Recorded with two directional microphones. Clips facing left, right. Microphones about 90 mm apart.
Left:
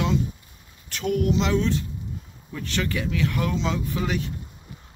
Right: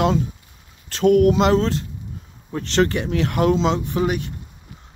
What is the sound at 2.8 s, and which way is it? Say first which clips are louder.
Speech: right 6 dB; 30° right (ahead or behind).